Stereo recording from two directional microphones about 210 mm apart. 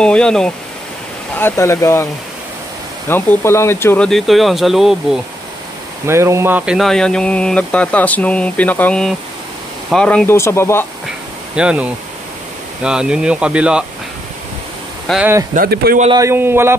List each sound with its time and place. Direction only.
0.0 s speech: 5° left (ahead or behind)
3.1 s speech: 10° left (ahead or behind)
6.0 s speech: 15° right (ahead or behind); by 10.9 s 10° left (ahead or behind)
11.5 s speech: 5° right (ahead or behind)
15.0 s a man's voice: 5° right (ahead or behind)
15.5 s speech: 45° right (ahead or behind)
16.2 s a man's voice: 10° right (ahead or behind)